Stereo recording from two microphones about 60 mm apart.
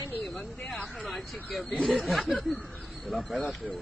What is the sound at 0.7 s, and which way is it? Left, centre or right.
Speech, centre.